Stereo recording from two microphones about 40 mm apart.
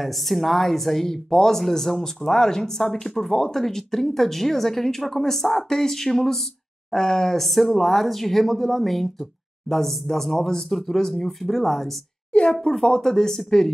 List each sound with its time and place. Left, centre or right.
0.0 s speech: centre
12.3 s speech: left
12.7 s speech: centre